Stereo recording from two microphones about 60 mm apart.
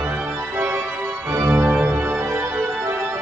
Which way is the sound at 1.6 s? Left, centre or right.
Right.